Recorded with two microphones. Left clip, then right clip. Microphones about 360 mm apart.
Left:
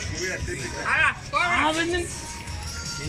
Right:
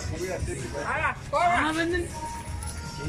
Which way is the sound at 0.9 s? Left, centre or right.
Right.